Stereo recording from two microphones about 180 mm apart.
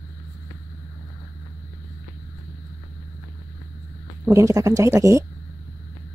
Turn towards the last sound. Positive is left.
turn(degrees=-15)  # may be behind; listen again after turning